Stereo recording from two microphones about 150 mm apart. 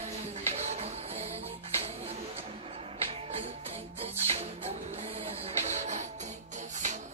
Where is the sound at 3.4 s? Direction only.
45° right (ahead or behind).